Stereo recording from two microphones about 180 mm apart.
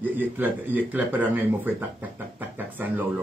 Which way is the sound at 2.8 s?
10° right (ahead or behind).